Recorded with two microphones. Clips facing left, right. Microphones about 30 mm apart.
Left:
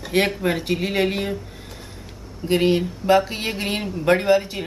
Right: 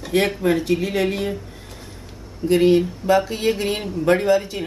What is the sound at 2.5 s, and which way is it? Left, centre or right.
Speech, centre.